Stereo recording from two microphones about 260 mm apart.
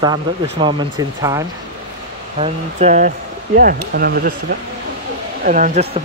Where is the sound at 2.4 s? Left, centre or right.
Right.